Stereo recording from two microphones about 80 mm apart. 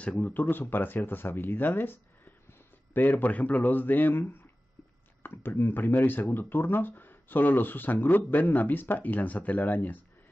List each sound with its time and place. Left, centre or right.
0.0 s speech: centre